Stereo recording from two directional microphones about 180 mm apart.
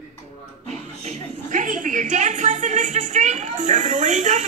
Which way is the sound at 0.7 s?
40° right (ahead or behind).